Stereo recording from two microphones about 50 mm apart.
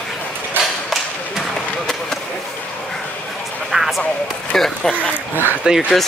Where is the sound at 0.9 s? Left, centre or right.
Centre.